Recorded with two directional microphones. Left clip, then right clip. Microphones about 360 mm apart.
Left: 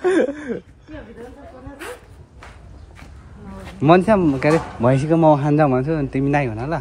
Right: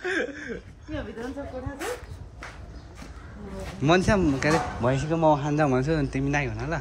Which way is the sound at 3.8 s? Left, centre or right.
Centre.